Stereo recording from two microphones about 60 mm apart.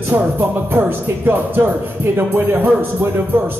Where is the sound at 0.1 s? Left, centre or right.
Right.